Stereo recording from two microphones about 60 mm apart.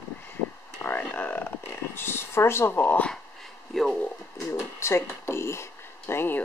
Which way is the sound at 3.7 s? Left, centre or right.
Centre.